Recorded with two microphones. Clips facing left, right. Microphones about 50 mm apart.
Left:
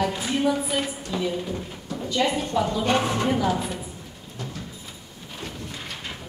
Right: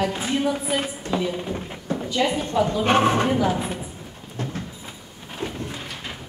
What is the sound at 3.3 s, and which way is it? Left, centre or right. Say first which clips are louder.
Speech: right 2 dB; centre.